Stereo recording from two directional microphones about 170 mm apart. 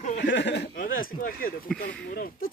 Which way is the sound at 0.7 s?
55° left (ahead or behind).